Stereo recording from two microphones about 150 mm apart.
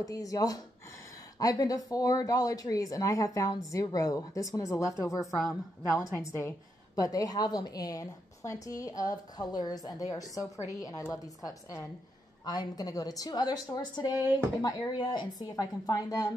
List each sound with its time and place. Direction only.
0.0 s a woman's voice: 25° left (ahead or behind)
5.4 s a woman's voice: centre (ahead or behind)
6.1 s a woman's voice: 15° left (ahead or behind)